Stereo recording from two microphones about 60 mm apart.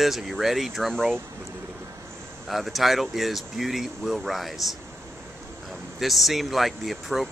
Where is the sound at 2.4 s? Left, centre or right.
Centre.